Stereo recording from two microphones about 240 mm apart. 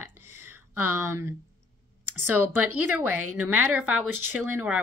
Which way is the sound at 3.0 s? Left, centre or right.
Right.